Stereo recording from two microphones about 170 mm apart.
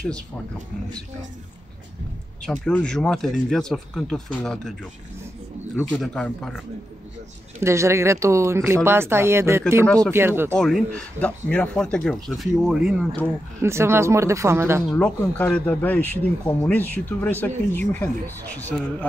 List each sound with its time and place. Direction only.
2.4 s speech: 5° left (ahead or behind)
5.9 s speech: 5° left (ahead or behind)
7.6 s speech: 15° right (ahead or behind)
10.5 s speech: 5° left (ahead or behind)
13.6 s speech: 15° right (ahead or behind)
14.9 s speech: 5° left (ahead or behind)